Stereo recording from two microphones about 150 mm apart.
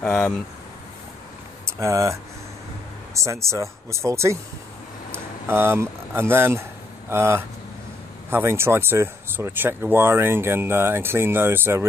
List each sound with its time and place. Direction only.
0.0 s speech: 5° left (ahead or behind)
1.7 s speech: 20° right (ahead or behind)
3.4 s speech: 20° right (ahead or behind)
5.5 s speech: 15° right (ahead or behind)